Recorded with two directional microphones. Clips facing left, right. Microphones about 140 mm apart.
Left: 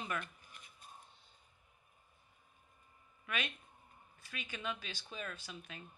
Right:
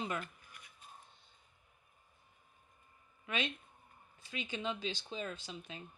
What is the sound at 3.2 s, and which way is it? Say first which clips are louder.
Speech: right 3 dB; 25° right (ahead or behind).